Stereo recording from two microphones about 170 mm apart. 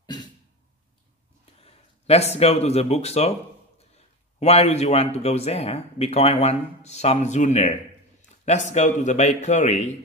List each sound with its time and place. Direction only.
0.0 s cough: 25° left (ahead or behind)
1.6 s speech: 35° left (ahead or behind)
4.4 s a man's voice: 40° left (ahead or behind)